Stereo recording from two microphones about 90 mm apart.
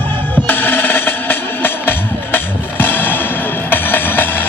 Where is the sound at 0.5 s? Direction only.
20° left (ahead or behind).